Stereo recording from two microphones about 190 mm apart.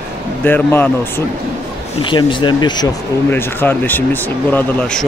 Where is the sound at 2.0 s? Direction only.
25° left (ahead or behind).